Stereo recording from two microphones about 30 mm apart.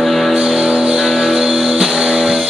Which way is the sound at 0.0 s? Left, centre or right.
Centre.